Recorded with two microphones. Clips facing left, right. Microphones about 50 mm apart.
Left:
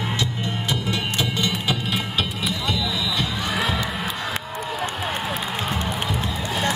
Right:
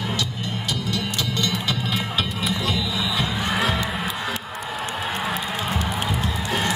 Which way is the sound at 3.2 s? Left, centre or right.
Centre.